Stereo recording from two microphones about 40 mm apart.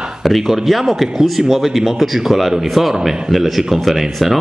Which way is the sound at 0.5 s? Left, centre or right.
Centre.